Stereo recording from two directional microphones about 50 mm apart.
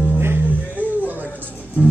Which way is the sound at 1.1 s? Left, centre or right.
Right.